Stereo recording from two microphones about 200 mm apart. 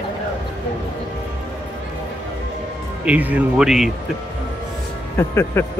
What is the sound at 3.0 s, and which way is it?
Speech, 5° right (ahead or behind).